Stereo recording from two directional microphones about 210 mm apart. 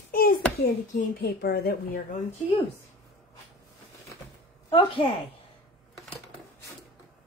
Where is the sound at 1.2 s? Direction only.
50° left (ahead or behind).